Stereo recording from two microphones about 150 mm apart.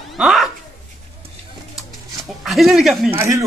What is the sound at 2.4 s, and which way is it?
Speech, centre (ahead or behind).